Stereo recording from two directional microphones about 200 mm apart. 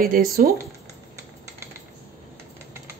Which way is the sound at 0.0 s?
45° right (ahead or behind).